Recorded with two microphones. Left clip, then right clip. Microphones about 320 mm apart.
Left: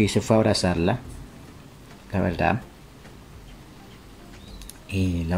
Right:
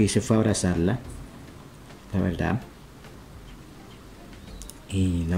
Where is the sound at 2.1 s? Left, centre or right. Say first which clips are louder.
Left 5 dB; centre.